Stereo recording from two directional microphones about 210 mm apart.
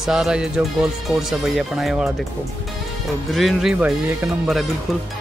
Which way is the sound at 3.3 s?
Centre (ahead or behind).